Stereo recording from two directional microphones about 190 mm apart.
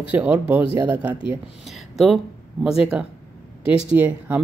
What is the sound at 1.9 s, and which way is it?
Speech, centre (ahead or behind).